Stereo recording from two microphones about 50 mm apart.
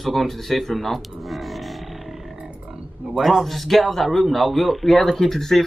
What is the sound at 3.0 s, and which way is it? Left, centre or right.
Speech, centre.